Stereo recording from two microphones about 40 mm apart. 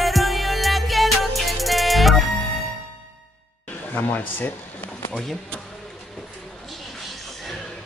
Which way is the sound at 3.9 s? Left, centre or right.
Left.